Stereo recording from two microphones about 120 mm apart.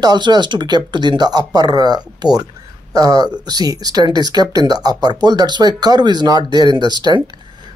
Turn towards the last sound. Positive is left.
turn(degrees=-35)  # may be behind; listen again after turning